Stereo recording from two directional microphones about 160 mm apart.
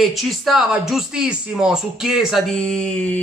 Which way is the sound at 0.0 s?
Centre (ahead or behind).